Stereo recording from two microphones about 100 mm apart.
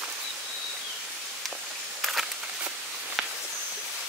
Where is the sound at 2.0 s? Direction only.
5° right (ahead or behind).